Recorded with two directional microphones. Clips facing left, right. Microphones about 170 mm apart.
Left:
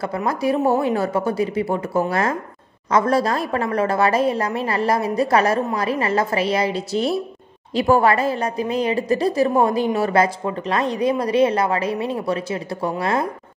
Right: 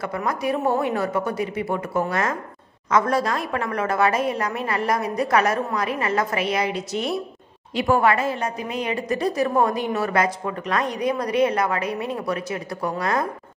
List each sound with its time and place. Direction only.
0.0 s a woman's voice: 30° left (ahead or behind)